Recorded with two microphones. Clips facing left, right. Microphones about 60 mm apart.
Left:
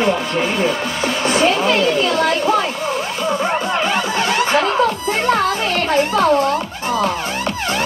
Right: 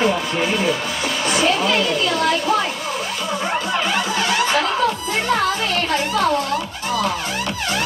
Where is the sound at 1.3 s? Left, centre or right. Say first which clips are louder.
Left 3 dB; left.